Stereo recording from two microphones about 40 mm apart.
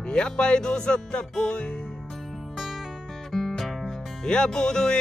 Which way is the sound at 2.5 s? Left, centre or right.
Centre.